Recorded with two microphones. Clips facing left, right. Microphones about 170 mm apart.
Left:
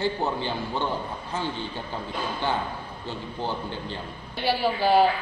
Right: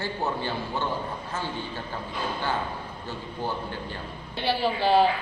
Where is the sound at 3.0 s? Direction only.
20° left (ahead or behind).